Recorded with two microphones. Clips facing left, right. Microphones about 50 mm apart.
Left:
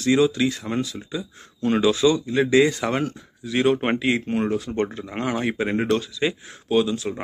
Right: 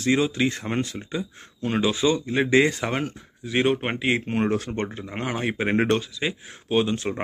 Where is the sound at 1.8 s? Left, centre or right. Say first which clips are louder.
Left 3 dB; right.